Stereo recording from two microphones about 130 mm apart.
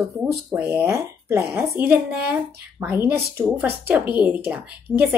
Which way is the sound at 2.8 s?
15° right (ahead or behind).